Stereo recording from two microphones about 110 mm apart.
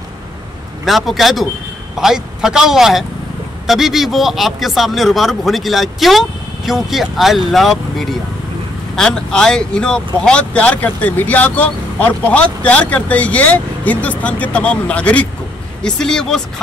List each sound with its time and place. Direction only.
0.8 s a man's voice: centre (ahead or behind)